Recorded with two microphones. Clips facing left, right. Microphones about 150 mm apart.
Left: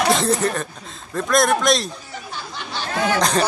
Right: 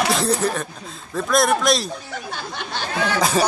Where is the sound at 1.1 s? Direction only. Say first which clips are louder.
Left 1 dB; centre (ahead or behind).